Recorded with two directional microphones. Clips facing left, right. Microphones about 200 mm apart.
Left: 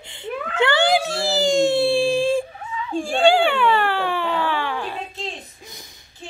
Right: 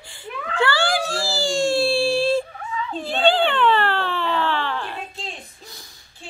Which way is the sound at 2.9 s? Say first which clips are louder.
Left 3 dB; 10° left (ahead or behind).